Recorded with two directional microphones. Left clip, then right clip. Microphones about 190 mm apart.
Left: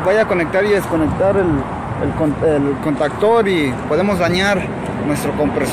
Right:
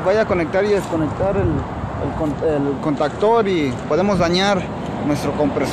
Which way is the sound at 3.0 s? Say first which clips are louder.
Left 2 dB; centre (ahead or behind).